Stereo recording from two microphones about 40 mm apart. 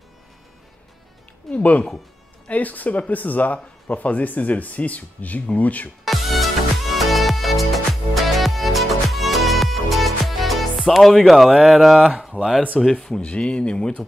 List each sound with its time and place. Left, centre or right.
1.5 s speech: left
6.0 s music: centre
11.6 s speech: centre
13.2 s speech: left